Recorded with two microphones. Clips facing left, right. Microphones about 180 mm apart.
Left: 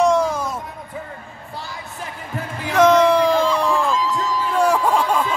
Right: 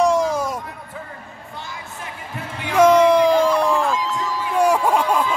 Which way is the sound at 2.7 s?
10° right (ahead or behind).